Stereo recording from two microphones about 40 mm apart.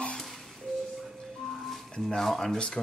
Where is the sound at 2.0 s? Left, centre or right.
Centre.